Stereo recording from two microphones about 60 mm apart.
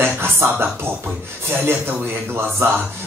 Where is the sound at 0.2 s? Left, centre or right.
Right.